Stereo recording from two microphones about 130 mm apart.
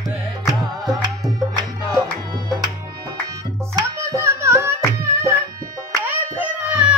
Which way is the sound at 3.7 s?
25° right (ahead or behind).